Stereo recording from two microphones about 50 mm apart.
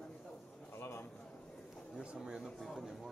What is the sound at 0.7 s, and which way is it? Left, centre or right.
Speech, left.